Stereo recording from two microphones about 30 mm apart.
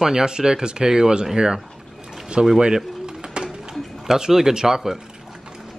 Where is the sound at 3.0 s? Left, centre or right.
Right.